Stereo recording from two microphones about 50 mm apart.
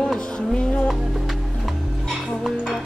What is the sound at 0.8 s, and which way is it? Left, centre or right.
Music, centre.